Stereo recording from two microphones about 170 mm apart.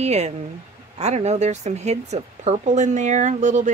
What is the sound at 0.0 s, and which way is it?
A woman's voice, 40° right (ahead or behind).